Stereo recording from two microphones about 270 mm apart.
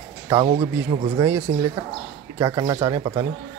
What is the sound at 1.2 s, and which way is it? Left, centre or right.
Speech, centre.